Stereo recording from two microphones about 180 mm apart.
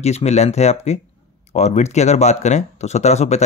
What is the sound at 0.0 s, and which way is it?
Speech, 35° left (ahead or behind).